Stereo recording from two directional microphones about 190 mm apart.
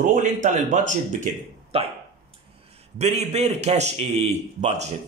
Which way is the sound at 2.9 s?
35° right (ahead or behind).